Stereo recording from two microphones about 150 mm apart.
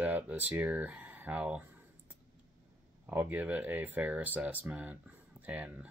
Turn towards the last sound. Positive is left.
turn(degrees=-10)  # may be behind; listen again after turning